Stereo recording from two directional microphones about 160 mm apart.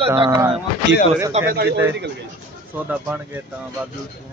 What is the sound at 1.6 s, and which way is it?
Speech, 90° right.